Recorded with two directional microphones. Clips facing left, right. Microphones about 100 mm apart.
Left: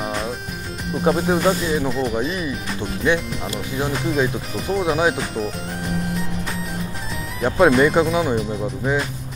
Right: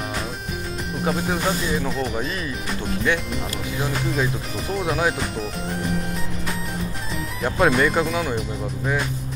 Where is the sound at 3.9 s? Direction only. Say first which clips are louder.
Left 4 dB; centre (ahead or behind).